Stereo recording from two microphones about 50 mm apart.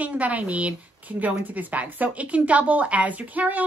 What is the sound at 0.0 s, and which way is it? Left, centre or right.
Speech, right.